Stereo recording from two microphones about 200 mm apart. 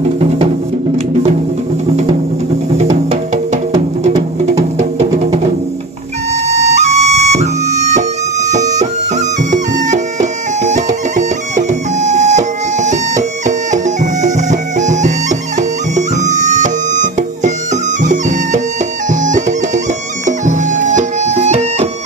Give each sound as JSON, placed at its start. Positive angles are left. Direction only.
{"t": 2.8, "sound": "music", "side_deg": -30}
{"t": 6.6, "sound": "flute", "side_deg": -35}
{"t": 8.5, "sound": "music", "side_deg": -35}
{"t": 10.6, "sound": "music", "side_deg": -35}
{"t": 20.2, "sound": "music", "side_deg": -40}